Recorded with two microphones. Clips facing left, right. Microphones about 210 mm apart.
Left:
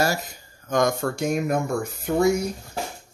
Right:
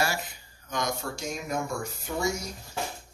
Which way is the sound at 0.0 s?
40° left (ahead or behind).